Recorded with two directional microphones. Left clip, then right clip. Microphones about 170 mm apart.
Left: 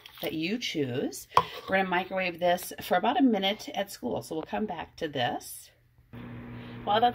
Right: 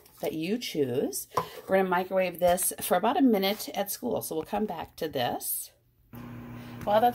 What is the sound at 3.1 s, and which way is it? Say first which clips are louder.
Speech: right 2 dB; 45° right (ahead or behind).